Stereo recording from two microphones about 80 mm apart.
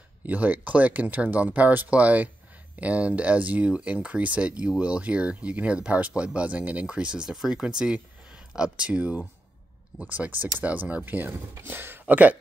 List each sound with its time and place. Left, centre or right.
0.3 s speech: centre